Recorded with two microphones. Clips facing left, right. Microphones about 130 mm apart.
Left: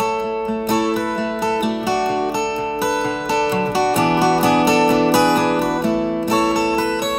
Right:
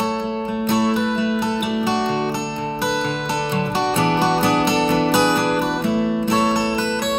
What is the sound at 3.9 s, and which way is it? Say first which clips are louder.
Music: left 1 dB; 15° left (ahead or behind).